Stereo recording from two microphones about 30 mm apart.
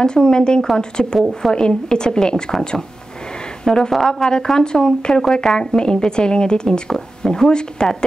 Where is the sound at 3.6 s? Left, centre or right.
Left.